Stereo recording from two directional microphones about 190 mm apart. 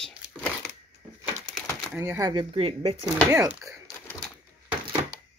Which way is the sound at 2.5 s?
30° right (ahead or behind).